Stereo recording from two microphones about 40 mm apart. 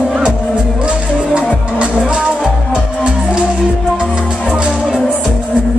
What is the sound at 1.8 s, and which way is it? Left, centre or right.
Music, right.